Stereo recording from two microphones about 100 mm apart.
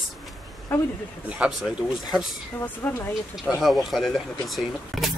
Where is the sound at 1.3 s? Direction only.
5° right (ahead or behind).